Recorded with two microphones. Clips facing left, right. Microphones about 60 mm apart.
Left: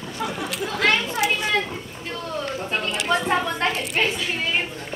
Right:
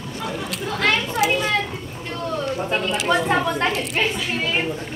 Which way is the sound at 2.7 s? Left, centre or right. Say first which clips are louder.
Right 2 dB; centre.